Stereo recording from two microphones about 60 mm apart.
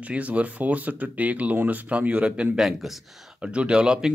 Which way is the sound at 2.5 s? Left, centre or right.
Centre.